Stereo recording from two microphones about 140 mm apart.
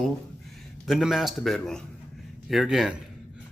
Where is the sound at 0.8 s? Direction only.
Centre (ahead or behind).